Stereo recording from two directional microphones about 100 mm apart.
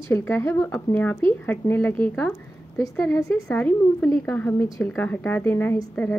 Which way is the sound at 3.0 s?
30° left (ahead or behind).